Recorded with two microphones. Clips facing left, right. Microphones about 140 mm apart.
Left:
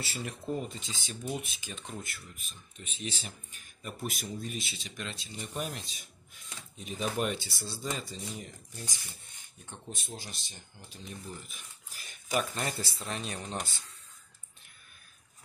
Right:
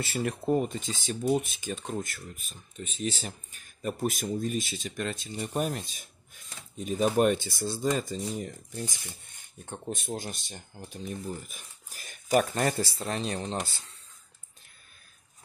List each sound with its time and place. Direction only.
0.0 s speech: 55° right (ahead or behind)
13.0 s speech: 35° right (ahead or behind)